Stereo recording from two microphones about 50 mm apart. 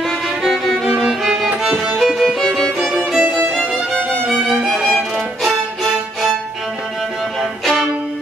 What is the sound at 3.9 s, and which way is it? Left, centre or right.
Music, centre.